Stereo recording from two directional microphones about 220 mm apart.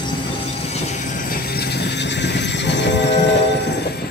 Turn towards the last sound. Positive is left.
turn(degrees=50)  # may be behind; listen again after turning